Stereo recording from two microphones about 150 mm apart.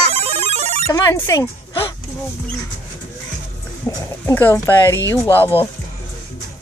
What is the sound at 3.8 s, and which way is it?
Speech, 15° left (ahead or behind).